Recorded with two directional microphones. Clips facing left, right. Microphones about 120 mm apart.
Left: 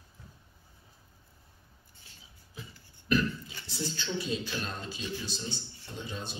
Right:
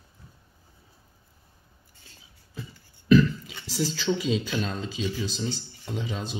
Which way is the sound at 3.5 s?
90° right.